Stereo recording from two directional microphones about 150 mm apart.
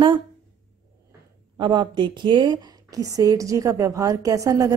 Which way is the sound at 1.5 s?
30° right (ahead or behind).